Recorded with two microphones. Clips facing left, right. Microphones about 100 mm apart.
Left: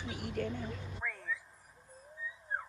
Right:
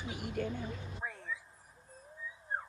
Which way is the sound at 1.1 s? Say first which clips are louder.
Left 2 dB; 30° right (ahead or behind).